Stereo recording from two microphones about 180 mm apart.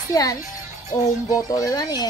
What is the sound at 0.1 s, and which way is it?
Speech, 20° left (ahead or behind).